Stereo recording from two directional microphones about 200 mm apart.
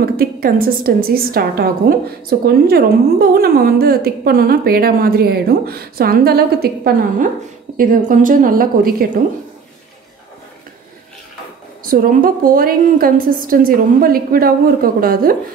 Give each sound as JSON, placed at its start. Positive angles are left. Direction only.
{"t": 0.0, "sound": "a woman's voice", "side_deg": -50}
{"t": 11.8, "sound": "a woman's voice", "side_deg": -45}